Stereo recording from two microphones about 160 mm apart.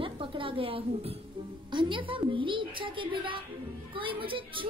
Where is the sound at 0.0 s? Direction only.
35° right (ahead or behind).